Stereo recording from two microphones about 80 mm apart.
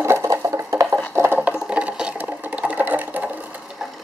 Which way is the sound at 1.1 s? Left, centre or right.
Right.